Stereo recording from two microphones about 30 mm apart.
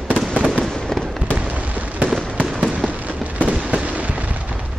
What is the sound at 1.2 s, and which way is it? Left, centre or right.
Fireworks, right.